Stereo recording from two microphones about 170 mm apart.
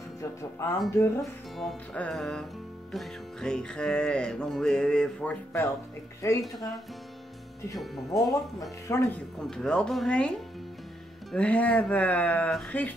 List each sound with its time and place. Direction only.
0.4 s speech: 20° left (ahead or behind)
1.6 s speech: centre (ahead or behind)
7.7 s speech: centre (ahead or behind)
8.8 s speech: 15° left (ahead or behind)
9.4 s speech: 5° left (ahead or behind)
11.3 s speech: 10° left (ahead or behind)